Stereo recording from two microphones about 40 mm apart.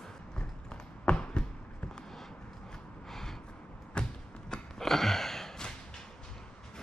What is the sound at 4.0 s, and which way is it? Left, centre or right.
Thump, left.